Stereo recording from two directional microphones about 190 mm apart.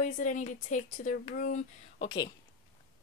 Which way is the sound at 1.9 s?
25° left (ahead or behind).